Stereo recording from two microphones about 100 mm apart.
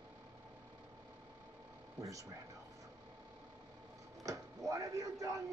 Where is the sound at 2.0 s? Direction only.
35° right (ahead or behind).